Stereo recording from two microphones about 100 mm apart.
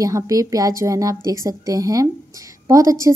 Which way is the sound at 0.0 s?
35° right (ahead or behind).